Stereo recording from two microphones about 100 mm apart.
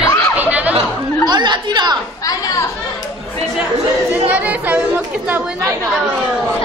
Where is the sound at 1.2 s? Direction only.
50° right (ahead or behind).